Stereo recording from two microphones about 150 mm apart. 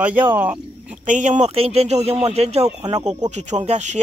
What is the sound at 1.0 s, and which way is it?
Speech, 55° right (ahead or behind).